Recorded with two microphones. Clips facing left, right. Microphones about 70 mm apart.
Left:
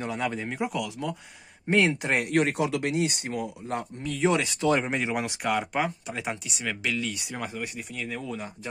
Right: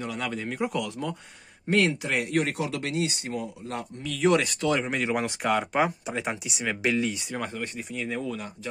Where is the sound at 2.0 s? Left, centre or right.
Left.